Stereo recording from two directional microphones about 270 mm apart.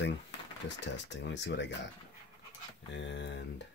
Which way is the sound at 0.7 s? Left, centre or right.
Left.